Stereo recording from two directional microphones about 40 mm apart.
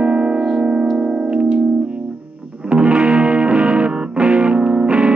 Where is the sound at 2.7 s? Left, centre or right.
Right.